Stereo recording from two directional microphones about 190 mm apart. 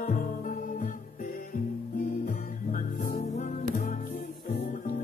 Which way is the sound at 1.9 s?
45° left (ahead or behind).